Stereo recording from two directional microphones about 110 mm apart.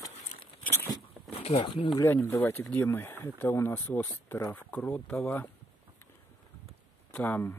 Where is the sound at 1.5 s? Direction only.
50° left (ahead or behind).